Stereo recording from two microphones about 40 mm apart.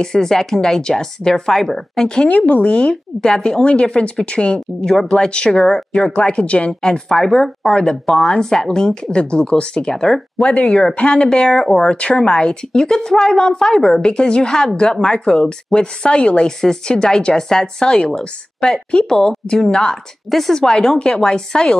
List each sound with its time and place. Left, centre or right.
0.0 s speech: centre
2.2 s speech: left
2.9 s speech: centre
3.6 s speech: left
4.6 s speech: centre
5.1 s speech: left
6.7 s speech: centre; by 11.2 s left
11.2 s speech: centre
20.2 s speech: centre
20.6 s speech: centre